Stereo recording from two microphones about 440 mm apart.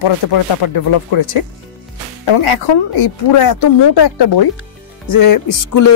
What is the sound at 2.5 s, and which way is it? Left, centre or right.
Speech, left.